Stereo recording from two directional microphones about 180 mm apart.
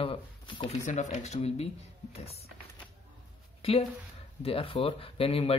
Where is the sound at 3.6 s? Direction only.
30° left (ahead or behind).